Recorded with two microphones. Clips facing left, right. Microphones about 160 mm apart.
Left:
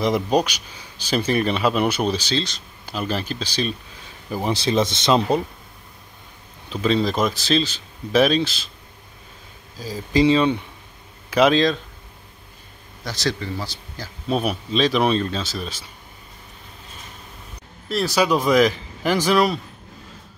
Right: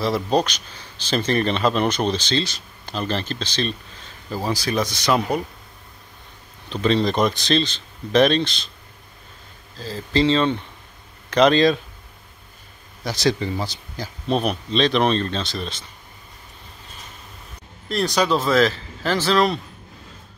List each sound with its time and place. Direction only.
0.0 s speech: 15° left (ahead or behind)
4.3 s speech: 20° left (ahead or behind)
6.7 s speech: 5° left (ahead or behind)
9.8 s speech: 10° left (ahead or behind)
13.0 s speech: 15° right (ahead or behind)
14.2 s speech: 5° left (ahead or behind)
17.8 s speech: 5° left (ahead or behind)